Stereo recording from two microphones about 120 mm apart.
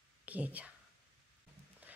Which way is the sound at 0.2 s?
10° right (ahead or behind).